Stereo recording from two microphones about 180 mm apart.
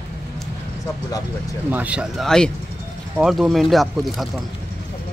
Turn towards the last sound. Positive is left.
turn(degrees=0)  # may be behind; listen again after turning